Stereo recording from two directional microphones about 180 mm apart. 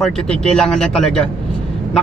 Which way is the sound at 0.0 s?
5° left (ahead or behind).